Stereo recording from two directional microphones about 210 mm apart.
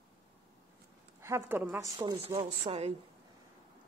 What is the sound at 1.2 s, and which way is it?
A woman's voice, 15° right (ahead or behind).